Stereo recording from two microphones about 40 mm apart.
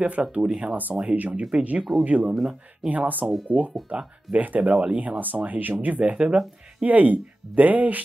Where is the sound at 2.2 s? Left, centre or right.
Centre.